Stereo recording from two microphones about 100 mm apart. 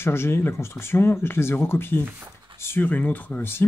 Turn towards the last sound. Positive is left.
turn(degrees=20)  # may be behind; listen again after turning